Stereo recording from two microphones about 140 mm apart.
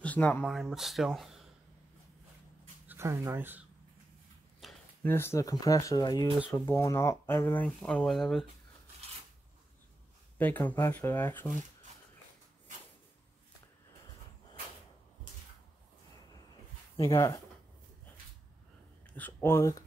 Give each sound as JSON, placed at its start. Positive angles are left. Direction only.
{"t": 0.0, "sound": "speech", "side_deg": 10}
{"t": 0.5, "sound": "speech", "side_deg": 0}
{"t": 2.9, "sound": "speech", "side_deg": -20}
{"t": 4.6, "sound": "a sound", "side_deg": 0}
{"t": 5.0, "sound": "speech", "side_deg": 15}
{"t": 10.3, "sound": "speech", "side_deg": 10}
{"t": 16.9, "sound": "speech", "side_deg": 25}
{"t": 19.1, "sound": "speech", "side_deg": 15}